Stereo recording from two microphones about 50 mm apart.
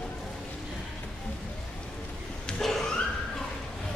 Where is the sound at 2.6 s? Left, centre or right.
Centre.